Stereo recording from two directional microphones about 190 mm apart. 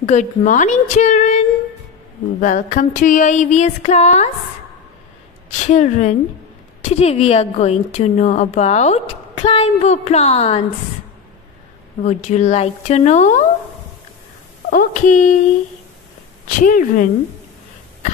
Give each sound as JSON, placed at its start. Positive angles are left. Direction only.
{"t": 0.0, "sound": "a woman's voice", "side_deg": 40}
{"t": 2.4, "sound": "a woman's voice", "side_deg": 40}
{"t": 5.7, "sound": "a woman's voice", "side_deg": 40}
{"t": 12.0, "sound": "a woman's voice", "side_deg": 40}
{"t": 14.7, "sound": "speech", "side_deg": 40}
{"t": 16.4, "sound": "speech", "side_deg": 45}